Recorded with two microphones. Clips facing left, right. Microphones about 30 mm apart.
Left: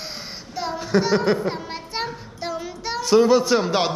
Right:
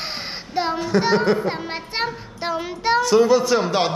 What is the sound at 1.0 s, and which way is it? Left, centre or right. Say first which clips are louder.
Music: right 2 dB; right.